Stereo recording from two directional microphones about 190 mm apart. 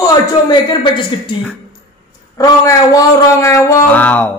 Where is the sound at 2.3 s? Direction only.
20° left (ahead or behind).